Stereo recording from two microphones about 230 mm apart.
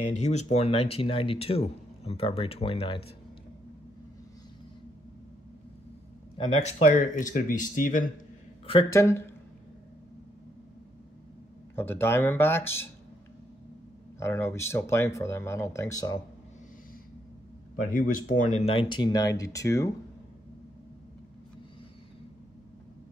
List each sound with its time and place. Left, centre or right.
0.1 s speech: left
6.3 s speech: left
8.6 s speech: centre
11.7 s speech: centre
14.2 s speech: centre
18.1 s speech: left; by 19.9 s centre